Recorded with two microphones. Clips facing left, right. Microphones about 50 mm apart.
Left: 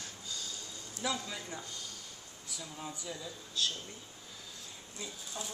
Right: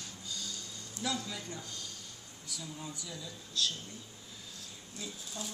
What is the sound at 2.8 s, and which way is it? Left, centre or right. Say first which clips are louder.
Speech: left 2 dB; left.